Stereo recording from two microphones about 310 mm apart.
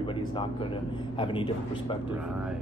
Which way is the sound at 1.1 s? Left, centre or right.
Centre.